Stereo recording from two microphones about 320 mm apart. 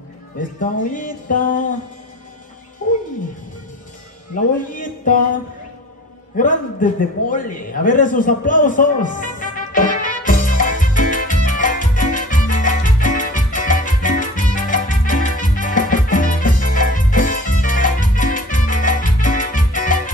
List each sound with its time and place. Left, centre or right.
0.4 s music: left
2.8 s music: left
4.4 s music: left
6.3 s a sound: left